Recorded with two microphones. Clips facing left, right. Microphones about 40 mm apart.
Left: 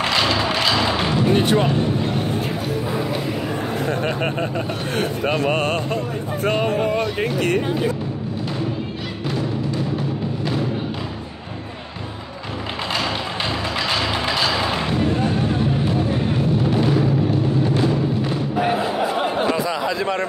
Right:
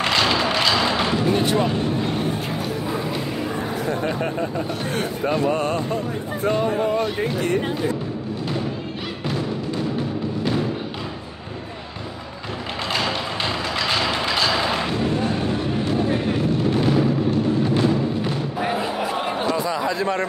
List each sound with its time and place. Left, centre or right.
0.0 s thump: centre
1.3 s vehicle: left
4.9 s a sound: left
12.9 s music: centre
16.7 s music: centre